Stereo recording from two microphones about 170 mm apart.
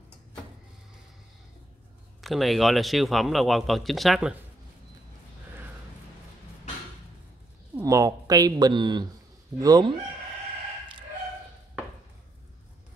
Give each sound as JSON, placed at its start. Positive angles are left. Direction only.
{"t": 2.2, "sound": "speech", "side_deg": 0}
{"t": 7.8, "sound": "speech", "side_deg": -20}